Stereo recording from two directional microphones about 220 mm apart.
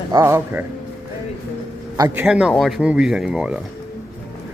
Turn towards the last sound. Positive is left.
turn(degrees=-5)  # may be behind; listen again after turning